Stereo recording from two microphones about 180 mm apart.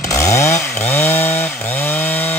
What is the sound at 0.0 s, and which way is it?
Chainsaw, 15° left (ahead or behind).